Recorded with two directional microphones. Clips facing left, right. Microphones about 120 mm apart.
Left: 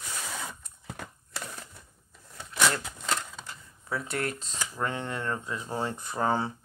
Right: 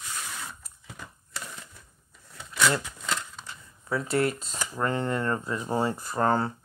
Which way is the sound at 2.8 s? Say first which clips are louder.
Left 1 dB; 40° left (ahead or behind).